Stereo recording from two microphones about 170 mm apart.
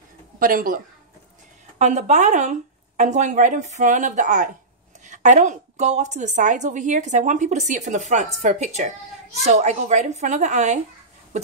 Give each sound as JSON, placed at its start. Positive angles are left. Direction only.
{"t": 0.4, "sound": "speech", "side_deg": -55}
{"t": 1.8, "sound": "a woman's voice", "side_deg": -40}